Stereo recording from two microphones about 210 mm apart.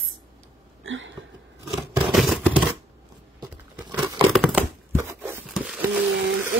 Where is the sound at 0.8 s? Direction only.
65° right (ahead or behind).